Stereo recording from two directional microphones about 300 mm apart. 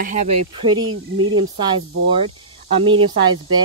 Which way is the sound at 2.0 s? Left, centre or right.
Centre.